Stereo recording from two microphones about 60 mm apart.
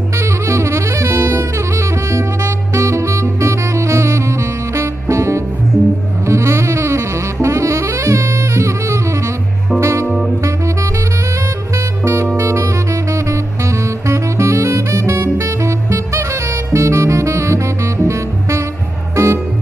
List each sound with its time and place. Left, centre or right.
0.2 s saxophone: right
6.2 s music: right
7.4 s saxophone: right
9.8 s music: right
10.4 s saxophone: right
11.7 s music: right